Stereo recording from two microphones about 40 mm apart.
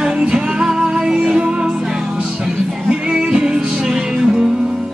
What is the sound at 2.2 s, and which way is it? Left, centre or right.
Music, right.